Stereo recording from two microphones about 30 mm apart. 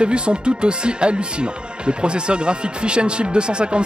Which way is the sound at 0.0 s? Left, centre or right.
Right.